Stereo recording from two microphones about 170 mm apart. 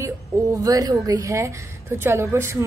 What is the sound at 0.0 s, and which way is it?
Speech, 20° right (ahead or behind).